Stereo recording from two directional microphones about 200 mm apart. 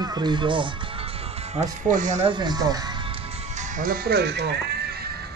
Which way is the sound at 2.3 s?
20° right (ahead or behind).